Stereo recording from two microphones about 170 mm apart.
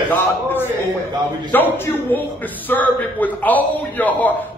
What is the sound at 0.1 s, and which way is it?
A man's voice, 10° left (ahead or behind).